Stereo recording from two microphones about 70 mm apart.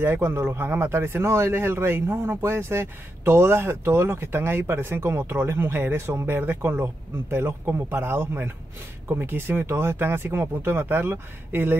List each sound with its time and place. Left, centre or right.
0.0 s a man's voice: right